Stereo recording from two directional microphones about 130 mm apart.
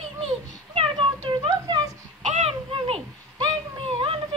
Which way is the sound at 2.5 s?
45° right (ahead or behind).